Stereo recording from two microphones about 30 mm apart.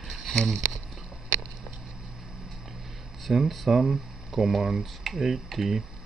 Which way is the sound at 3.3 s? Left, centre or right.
Right.